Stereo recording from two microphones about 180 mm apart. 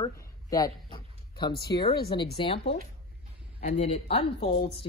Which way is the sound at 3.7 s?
35° left (ahead or behind).